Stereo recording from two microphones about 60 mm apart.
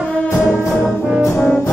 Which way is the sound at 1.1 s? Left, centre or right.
Centre.